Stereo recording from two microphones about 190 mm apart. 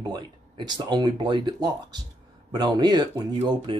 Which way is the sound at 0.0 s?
20° right (ahead or behind).